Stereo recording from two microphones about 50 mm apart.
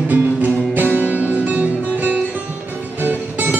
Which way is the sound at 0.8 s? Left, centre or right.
Right.